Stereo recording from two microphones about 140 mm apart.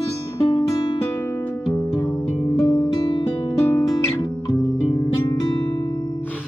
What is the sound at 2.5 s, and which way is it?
Music, 25° left (ahead or behind).